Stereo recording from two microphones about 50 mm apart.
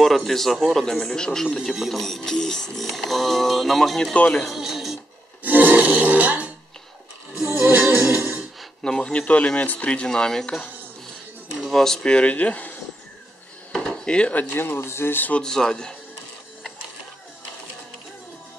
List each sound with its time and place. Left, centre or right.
0.0 s a man's voice: centre
4.0 s speech: left
4.5 s speech: centre
5.4 s a sound: right
7.4 s music: right
8.8 s a man's voice: centre
9.2 s speech: left
10.0 s a man's voice: centre
11.6 s speech: centre
12.0 s speech: left
13.7 s drawer open or close: centre
14.5 s speech: left
15.4 s a man's voice: centre